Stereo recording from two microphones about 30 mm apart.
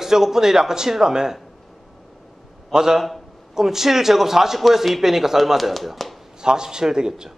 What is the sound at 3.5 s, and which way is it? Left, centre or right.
A man's voice, centre.